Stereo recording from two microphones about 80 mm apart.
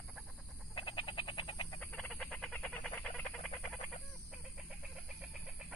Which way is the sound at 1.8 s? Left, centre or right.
Left.